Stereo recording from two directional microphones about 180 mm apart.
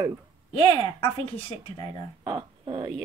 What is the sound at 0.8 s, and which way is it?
Speech, 30° left (ahead or behind).